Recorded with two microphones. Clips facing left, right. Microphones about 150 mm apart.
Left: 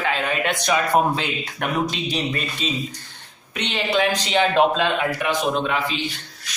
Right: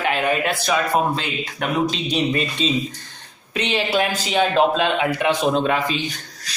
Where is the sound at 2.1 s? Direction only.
20° right (ahead or behind).